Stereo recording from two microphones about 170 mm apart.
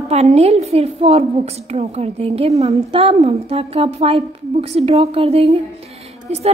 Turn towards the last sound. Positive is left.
turn(degrees=-40)  # may be behind; listen again after turning